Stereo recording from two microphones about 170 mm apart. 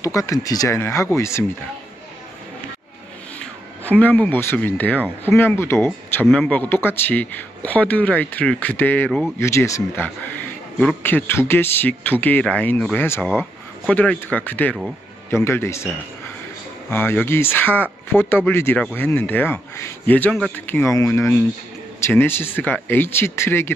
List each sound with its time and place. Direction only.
0.0 s a man's voice: 20° left (ahead or behind)
3.8 s a man's voice: 10° left (ahead or behind)
16.9 s a man's voice: 15° left (ahead or behind)